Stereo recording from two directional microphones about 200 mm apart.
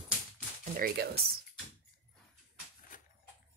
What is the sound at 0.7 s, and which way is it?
Speech, 50° right (ahead or behind).